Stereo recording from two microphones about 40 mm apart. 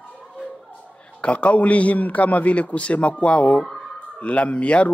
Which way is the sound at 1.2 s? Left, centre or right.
Left.